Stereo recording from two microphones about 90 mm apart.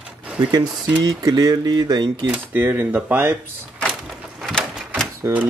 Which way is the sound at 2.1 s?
20° right (ahead or behind).